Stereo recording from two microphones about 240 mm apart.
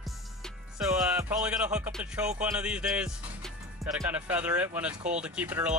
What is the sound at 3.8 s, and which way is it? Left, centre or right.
Speech, centre.